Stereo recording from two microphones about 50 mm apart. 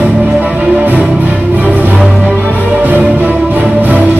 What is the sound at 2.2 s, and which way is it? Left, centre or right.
Music, right.